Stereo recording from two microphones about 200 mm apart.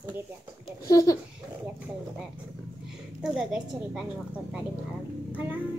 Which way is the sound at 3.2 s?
5° right (ahead or behind).